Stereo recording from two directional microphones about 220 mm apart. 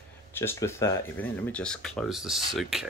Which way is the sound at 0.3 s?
10° left (ahead or behind).